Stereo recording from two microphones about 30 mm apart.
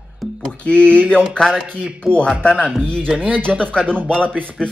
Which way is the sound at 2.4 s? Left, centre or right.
Left.